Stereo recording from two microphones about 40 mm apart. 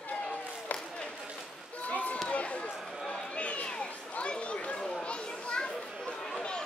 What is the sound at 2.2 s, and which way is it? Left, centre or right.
Run, left.